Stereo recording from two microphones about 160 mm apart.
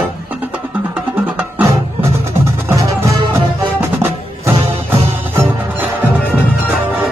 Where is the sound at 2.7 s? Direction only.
15° right (ahead or behind).